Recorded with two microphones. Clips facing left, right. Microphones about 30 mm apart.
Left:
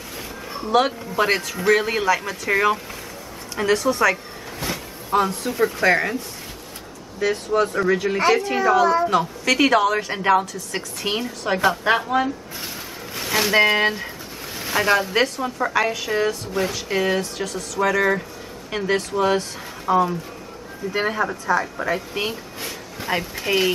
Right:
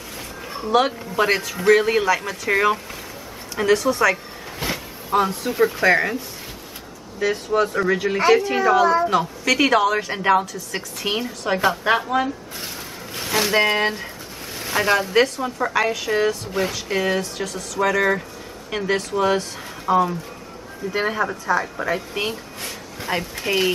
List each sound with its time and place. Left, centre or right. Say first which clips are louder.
0.5 s speech: even; centre
4.6 s a sound: right 2 dB; right
5.1 s speech: right 1 dB; centre
7.2 s speech: even; centre